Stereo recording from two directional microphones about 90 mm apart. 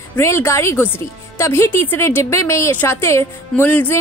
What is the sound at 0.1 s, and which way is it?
Speech, 30° left (ahead or behind).